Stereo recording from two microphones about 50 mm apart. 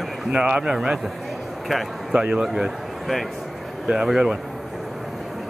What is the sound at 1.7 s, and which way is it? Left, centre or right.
Speech, centre.